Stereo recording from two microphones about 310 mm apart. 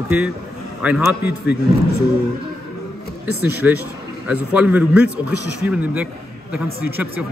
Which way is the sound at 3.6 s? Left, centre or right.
Centre.